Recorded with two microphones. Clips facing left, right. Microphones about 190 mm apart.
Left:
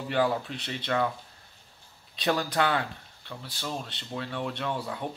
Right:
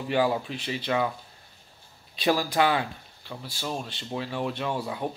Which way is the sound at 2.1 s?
10° right (ahead or behind).